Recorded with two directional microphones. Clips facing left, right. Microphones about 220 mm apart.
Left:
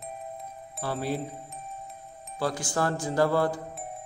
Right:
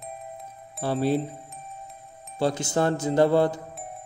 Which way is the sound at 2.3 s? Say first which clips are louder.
Right 5 dB; 25° right (ahead or behind).